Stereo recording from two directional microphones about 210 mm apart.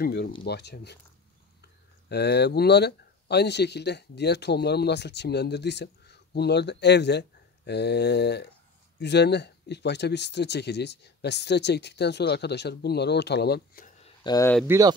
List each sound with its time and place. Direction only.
0.0 s speech: 50° left (ahead or behind)
2.0 s speech: 50° left (ahead or behind)
14.0 s a sound: 20° left (ahead or behind)
14.7 s speech: 10° right (ahead or behind)